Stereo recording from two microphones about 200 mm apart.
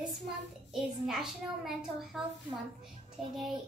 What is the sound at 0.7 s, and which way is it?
A child's voice, centre (ahead or behind).